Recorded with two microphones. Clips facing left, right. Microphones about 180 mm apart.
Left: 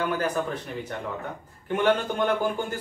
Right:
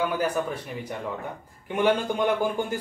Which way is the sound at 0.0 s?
10° right (ahead or behind).